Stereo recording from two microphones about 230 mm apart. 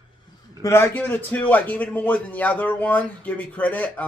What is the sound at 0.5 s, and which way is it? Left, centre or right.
A man's voice, centre.